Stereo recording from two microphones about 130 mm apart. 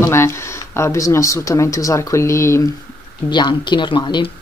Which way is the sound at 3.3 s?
35° left (ahead or behind).